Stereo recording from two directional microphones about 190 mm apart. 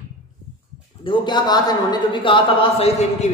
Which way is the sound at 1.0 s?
25° left (ahead or behind).